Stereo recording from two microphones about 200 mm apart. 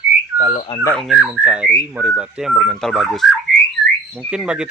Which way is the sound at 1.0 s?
Centre (ahead or behind).